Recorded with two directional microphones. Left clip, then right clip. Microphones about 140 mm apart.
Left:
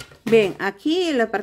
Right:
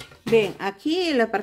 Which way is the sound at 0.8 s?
15° left (ahead or behind).